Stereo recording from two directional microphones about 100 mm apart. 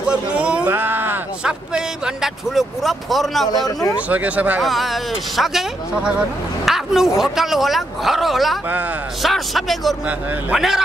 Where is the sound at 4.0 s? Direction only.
15° right (ahead or behind).